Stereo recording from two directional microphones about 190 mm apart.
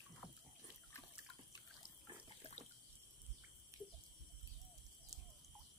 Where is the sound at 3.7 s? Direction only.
15° right (ahead or behind).